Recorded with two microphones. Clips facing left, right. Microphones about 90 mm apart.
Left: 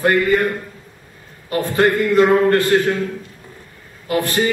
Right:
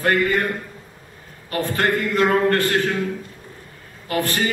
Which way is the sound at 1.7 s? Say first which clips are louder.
Left 6 dB; 15° left (ahead or behind).